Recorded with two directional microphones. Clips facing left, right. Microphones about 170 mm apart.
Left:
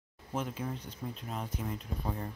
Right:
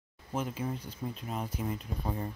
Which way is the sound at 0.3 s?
5° right (ahead or behind).